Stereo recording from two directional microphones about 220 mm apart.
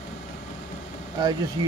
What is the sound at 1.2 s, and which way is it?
Speech, 20° right (ahead or behind).